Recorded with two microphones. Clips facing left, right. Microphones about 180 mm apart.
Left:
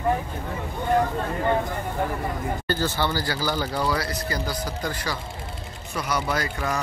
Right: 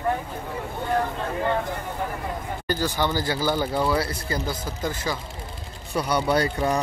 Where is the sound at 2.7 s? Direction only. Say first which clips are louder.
Right 2 dB; 15° right (ahead or behind).